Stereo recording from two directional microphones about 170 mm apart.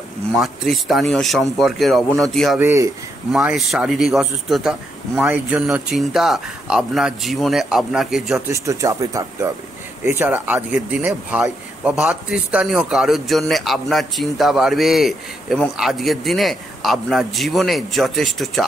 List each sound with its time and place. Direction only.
0.3 s a man's voice: centre (ahead or behind)
2.6 s speech: 15° right (ahead or behind)
3.3 s a man's voice: centre (ahead or behind)
8.5 s a man's voice: 20° right (ahead or behind); by 18.7 s centre (ahead or behind)